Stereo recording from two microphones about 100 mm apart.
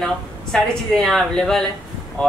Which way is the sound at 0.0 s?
5° left (ahead or behind).